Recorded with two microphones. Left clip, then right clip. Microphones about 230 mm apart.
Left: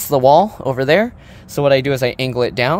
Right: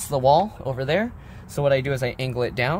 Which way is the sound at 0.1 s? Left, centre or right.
Left.